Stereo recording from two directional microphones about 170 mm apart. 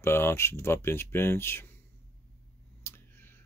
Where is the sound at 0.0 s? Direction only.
15° left (ahead or behind).